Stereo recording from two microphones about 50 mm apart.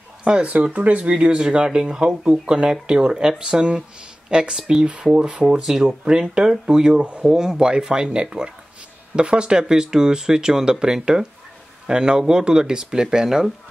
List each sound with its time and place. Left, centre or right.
0.2 s a sound: centre
0.7 s speech: right
5.6 s speech: centre